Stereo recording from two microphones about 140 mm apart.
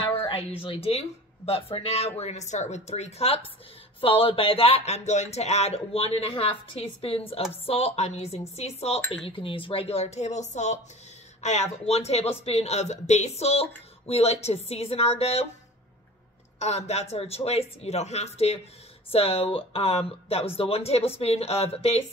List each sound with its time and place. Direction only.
0.3 s speech: 45° left (ahead or behind)
16.5 s speech: 50° left (ahead or behind)